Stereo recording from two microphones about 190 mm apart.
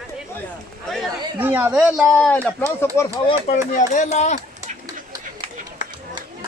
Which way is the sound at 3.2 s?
35° left (ahead or behind).